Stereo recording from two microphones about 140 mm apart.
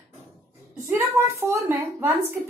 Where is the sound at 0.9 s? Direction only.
20° right (ahead or behind).